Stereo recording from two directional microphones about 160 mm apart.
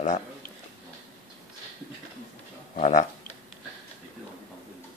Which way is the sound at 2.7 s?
55° left (ahead or behind).